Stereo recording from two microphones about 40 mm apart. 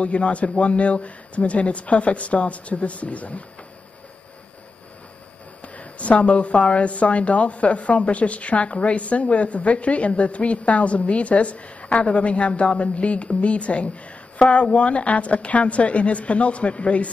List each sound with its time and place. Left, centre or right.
0.0 s a woman's voice: left
5.6 s a woman's voice: left